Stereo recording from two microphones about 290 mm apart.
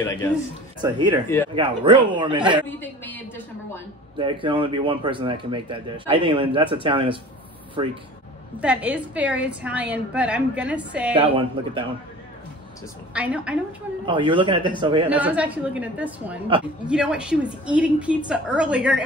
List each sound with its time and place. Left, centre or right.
0.7 s speech: centre
2.8 s a woman's voice: centre
4.2 s speech: centre
8.5 s a woman's voice: centre
11.3 s speech: centre
13.1 s a woman's voice: centre
14.0 s speech: centre
15.0 s a woman's voice: centre